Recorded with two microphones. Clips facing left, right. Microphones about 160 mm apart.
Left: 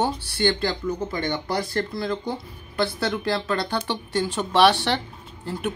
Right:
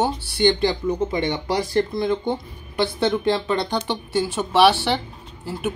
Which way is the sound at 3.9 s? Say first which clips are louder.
Right 2 dB; 10° right (ahead or behind).